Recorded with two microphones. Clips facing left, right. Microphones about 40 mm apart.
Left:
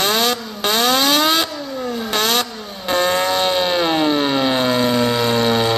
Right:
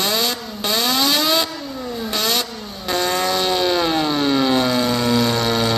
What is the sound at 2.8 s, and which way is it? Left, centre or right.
Civil defense siren, left.